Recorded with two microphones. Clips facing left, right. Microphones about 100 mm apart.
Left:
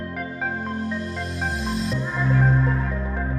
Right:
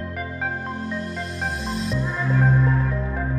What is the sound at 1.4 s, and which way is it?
Music, centre (ahead or behind).